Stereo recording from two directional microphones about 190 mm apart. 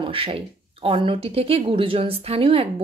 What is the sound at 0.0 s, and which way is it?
Speech, 30° right (ahead or behind).